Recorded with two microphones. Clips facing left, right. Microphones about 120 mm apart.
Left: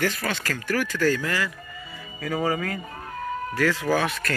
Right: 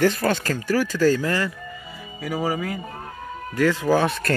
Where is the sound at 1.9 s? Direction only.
10° right (ahead or behind).